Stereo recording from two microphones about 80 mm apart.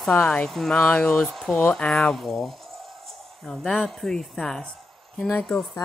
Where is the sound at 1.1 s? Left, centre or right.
Centre.